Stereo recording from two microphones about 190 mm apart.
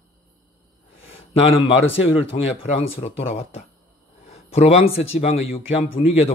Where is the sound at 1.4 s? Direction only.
30° left (ahead or behind).